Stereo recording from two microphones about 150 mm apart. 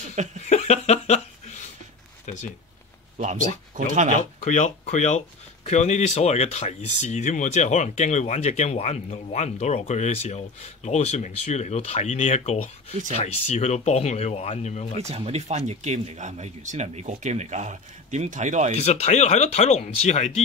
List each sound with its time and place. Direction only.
0.5 s a sound: 50° left (ahead or behind)
3.2 s speech: 55° right (ahead or behind)
4.1 s speech: 50° left (ahead or behind)
15.0 s speech: 45° right (ahead or behind)
18.8 s speech: 45° left (ahead or behind)